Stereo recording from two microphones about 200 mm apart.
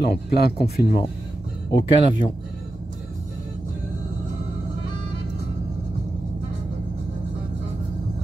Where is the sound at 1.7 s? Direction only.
25° left (ahead or behind).